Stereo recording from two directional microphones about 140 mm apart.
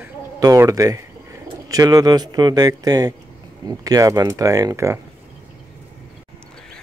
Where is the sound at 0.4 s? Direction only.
25° right (ahead or behind).